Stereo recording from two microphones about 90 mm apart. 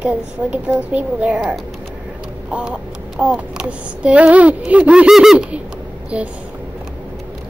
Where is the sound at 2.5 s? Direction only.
10° right (ahead or behind).